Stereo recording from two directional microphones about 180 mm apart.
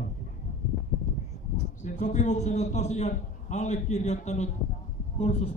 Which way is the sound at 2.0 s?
40° left (ahead or behind).